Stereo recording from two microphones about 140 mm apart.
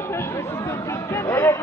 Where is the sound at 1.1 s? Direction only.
20° left (ahead or behind).